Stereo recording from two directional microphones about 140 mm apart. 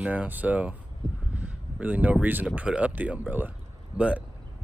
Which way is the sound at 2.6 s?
10° right (ahead or behind).